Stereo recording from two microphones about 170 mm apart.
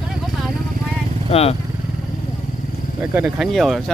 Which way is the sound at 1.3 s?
35° left (ahead or behind).